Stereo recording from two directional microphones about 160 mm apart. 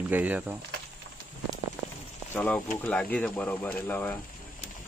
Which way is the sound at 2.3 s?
10° left (ahead or behind).